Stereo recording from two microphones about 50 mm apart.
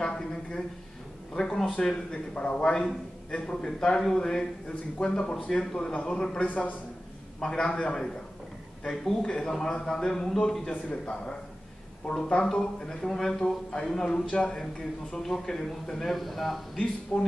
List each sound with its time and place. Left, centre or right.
0.0 s a sound: centre
1.3 s a man's voice: centre
6.4 s a man's voice: left
7.3 s a man's voice: centre
12.1 s a man's voice: centre
16.7 s a man's voice: centre